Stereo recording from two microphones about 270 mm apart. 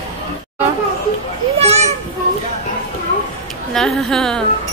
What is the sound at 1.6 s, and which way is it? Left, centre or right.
Speech, right.